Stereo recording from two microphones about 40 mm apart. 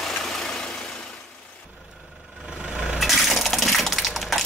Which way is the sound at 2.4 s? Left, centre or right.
Centre.